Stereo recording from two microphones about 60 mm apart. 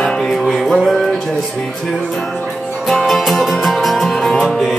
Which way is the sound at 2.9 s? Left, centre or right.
Centre.